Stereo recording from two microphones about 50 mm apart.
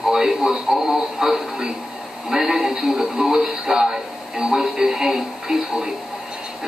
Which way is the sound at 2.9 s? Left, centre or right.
Right.